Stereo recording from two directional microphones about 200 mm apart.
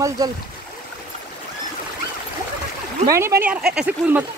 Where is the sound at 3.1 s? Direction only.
15° right (ahead or behind).